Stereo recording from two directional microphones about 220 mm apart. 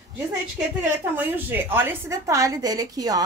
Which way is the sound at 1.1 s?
10° right (ahead or behind).